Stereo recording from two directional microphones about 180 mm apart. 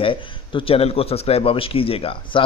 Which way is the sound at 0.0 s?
30° left (ahead or behind).